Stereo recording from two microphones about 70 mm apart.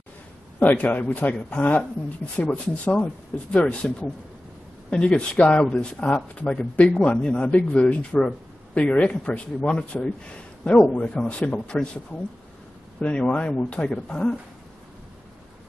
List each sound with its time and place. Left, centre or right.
0.6 s a man's voice: left
13.0 s speech: centre